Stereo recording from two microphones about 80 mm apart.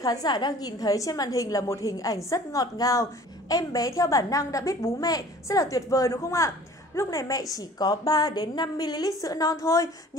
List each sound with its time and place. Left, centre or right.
0.0 s a woman's voice: left